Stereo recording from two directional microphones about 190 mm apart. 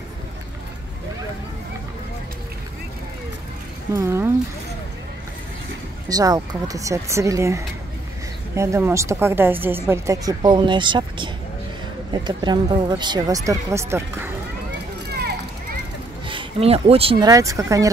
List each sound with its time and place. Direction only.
3.9 s a woman's voice: 15° right (ahead or behind)
6.0 s a woman's voice: 20° right (ahead or behind)
15.0 s a sound: 60° right (ahead or behind)
16.3 s speech: 30° right (ahead or behind)
17.3 s a woman's voice: 15° right (ahead or behind)